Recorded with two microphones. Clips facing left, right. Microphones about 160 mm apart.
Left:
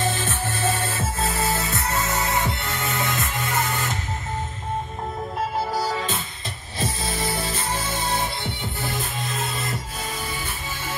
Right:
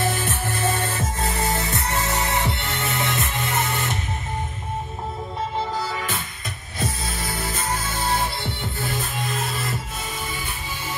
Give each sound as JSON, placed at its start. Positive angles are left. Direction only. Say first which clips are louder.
{"t": 0.0, "sound": "music", "louder": "right 1 dB", "side_deg": -15}
{"t": 7.2, "sound": "music", "louder": "right 2 dB", "side_deg": 25}